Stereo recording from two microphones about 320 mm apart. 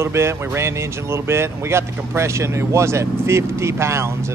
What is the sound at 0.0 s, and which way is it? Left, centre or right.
Speech, centre.